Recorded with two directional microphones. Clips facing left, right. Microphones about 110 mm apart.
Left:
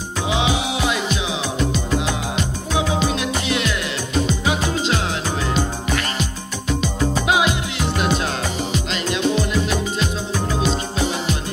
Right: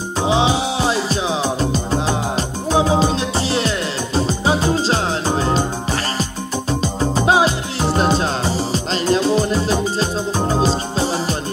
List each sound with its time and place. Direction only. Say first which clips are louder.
0.2 s music: right 4 dB; 30° right (ahead or behind)